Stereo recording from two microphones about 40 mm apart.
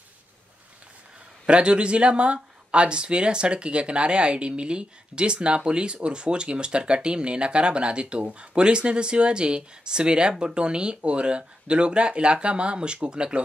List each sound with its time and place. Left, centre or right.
1.4 s speech: right